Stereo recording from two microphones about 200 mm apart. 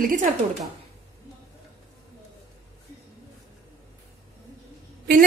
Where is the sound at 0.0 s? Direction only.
40° right (ahead or behind).